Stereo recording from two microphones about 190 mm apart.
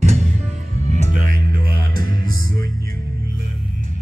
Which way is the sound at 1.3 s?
50° right (ahead or behind).